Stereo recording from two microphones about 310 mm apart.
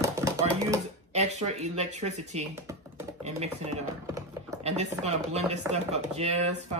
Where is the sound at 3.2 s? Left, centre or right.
Right.